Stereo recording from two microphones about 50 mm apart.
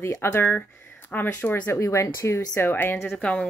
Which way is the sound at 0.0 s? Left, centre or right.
Left.